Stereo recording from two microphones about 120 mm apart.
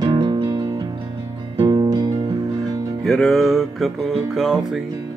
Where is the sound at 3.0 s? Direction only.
5° left (ahead or behind).